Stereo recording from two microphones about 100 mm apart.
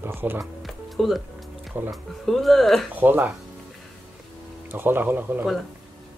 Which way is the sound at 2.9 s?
20° right (ahead or behind).